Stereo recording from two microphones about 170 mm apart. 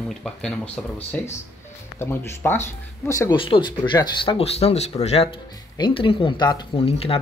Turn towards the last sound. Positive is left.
turn(degrees=35)  # may be behind; listen again after turning